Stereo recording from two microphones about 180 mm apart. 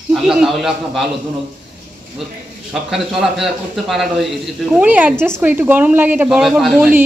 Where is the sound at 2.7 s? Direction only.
Centre (ahead or behind).